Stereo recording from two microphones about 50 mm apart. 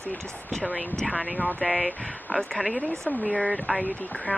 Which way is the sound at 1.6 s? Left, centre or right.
Centre.